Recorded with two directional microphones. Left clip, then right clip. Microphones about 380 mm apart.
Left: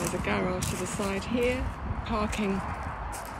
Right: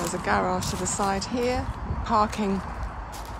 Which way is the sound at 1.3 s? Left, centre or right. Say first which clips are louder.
Right 1 dB; right.